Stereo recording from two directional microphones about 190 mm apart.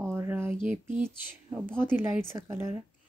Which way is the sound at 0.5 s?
40° right (ahead or behind).